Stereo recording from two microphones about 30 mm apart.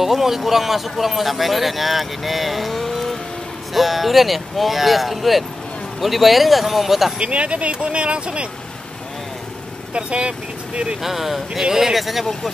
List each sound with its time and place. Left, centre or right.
0.0 s speech: centre
7.2 s speech: right
9.9 s speech: right
11.0 s speech: centre
12.0 s speech: centre